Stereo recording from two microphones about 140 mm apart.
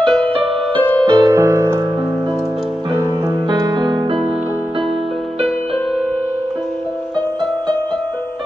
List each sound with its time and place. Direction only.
0.0 s music: 5° left (ahead or behind)
1.2 s music: 20° right (ahead or behind)
2.9 s music: 30° right (ahead or behind)